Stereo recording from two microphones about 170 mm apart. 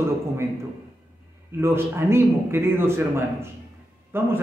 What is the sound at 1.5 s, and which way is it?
A man's voice, 15° right (ahead or behind).